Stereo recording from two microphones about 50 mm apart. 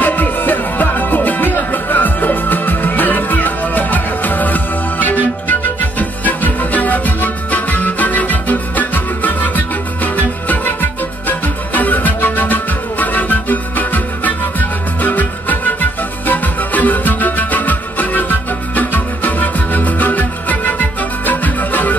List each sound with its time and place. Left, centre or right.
0.0 s music: left